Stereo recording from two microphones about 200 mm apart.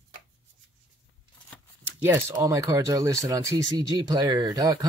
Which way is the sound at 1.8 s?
10° right (ahead or behind).